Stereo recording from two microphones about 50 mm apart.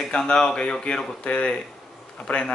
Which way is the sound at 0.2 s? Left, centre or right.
Centre.